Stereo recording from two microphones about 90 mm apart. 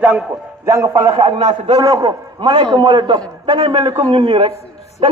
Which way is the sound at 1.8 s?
45° right (ahead or behind).